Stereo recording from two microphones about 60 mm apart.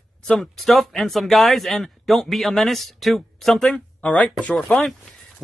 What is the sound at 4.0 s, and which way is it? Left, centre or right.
Speech, left.